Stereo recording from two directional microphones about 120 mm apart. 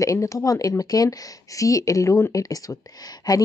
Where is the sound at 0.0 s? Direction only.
25° left (ahead or behind).